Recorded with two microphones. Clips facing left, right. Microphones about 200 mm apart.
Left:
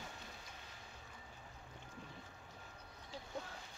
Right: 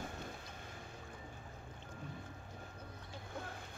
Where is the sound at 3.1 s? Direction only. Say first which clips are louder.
Left 1 dB; 55° right (ahead or behind).